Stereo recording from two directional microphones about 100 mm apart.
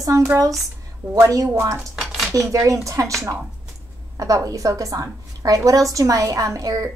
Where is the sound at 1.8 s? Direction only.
5° right (ahead or behind).